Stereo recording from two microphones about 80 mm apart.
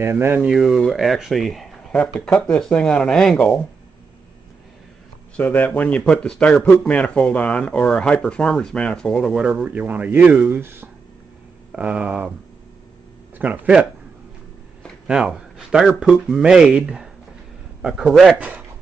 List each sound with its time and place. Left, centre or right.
0.0 s speech: right
0.4 s speech: centre
5.3 s speech: left
9.5 s speech: centre
10.6 s speech: right
11.7 s speech: centre
13.4 s speech: centre
15.0 s speech: centre
18.1 s speech: centre